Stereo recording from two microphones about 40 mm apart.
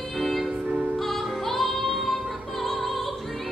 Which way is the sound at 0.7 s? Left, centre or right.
Right.